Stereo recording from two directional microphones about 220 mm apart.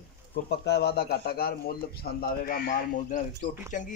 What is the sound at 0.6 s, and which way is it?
Speech, 50° left (ahead or behind).